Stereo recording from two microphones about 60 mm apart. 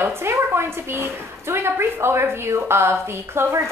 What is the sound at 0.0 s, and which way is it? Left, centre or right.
A woman's voice, right.